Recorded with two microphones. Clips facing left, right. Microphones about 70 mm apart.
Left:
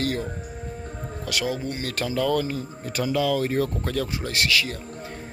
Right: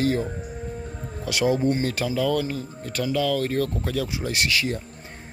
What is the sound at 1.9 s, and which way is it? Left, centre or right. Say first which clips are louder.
A man's voice: even; centre.